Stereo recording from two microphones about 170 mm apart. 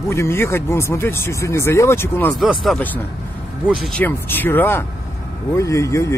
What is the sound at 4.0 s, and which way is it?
Speech, 10° left (ahead or behind).